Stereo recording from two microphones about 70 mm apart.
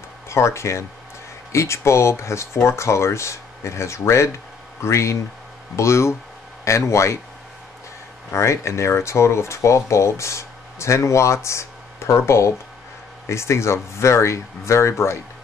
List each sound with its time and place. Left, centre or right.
0.3 s speech: left
8.3 s speech: left